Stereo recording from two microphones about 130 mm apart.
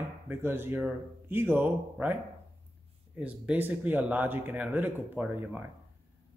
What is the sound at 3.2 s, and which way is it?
Speech, 10° right (ahead or behind).